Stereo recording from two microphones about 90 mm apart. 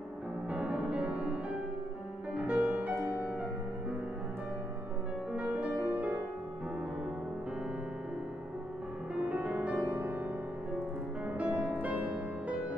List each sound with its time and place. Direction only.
0.5 s music: 10° right (ahead or behind)
5.3 s music: 15° right (ahead or behind)
9.2 s music: 15° right (ahead or behind)
11.3 s music: 15° right (ahead or behind)